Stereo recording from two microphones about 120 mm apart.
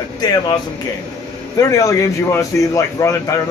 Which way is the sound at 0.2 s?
35° left (ahead or behind).